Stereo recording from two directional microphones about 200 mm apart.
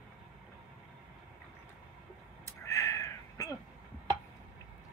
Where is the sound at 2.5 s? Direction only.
15° left (ahead or behind).